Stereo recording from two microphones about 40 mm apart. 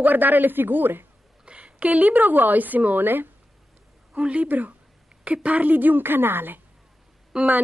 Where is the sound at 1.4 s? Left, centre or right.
Right.